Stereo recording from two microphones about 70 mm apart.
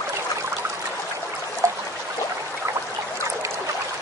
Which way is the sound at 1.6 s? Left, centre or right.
Right.